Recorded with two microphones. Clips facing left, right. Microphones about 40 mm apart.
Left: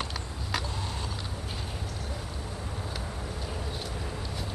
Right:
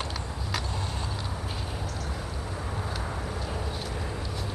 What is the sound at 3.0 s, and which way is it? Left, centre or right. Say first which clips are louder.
Vehicle: right 4 dB; centre.